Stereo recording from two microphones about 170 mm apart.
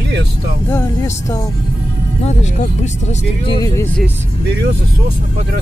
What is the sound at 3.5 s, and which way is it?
Speech, 25° left (ahead or behind).